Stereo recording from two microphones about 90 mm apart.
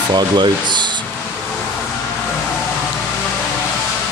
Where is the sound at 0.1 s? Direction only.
55° right (ahead or behind).